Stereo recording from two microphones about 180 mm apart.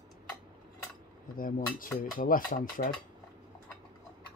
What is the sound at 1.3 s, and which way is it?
Speech, 50° left (ahead or behind).